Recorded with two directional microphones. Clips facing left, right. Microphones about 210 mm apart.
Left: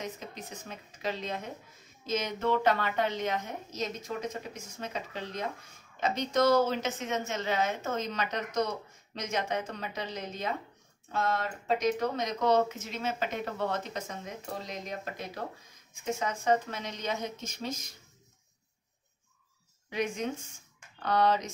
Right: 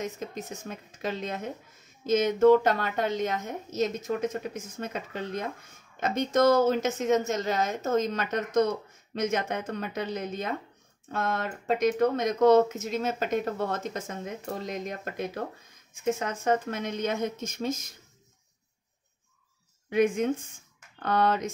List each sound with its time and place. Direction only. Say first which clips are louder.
0.0 s a woman's voice: right 5 dB; 45° right (ahead or behind)
19.9 s a woman's voice: right 8 dB; 55° right (ahead or behind)